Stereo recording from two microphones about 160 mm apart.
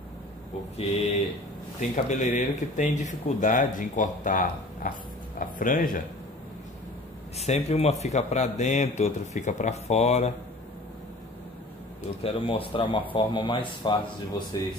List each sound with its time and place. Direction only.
0.7 s speech: 45° left (ahead or behind)
7.3 s speech: 40° left (ahead or behind)
12.2 s speech: 35° left (ahead or behind)